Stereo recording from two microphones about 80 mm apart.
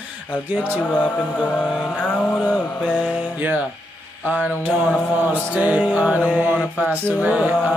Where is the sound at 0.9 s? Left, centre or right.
Centre.